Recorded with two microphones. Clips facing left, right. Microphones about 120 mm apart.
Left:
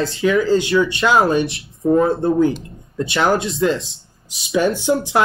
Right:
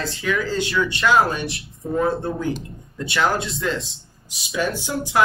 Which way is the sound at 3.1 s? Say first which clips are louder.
Left 4 dB; 25° left (ahead or behind).